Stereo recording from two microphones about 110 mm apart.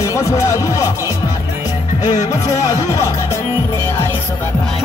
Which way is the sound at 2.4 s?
30° left (ahead or behind).